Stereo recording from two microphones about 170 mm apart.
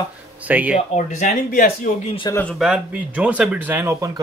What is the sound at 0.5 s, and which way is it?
Speech, 10° right (ahead or behind).